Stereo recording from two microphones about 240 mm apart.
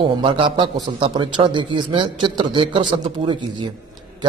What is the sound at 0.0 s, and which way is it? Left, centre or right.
A man's voice, centre.